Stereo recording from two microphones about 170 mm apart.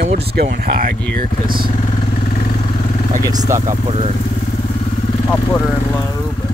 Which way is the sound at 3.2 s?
20° right (ahead or behind).